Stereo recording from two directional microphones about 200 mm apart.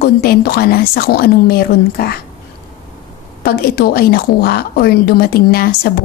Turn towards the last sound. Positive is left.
turn(degrees=50)  # may be behind; listen again after turning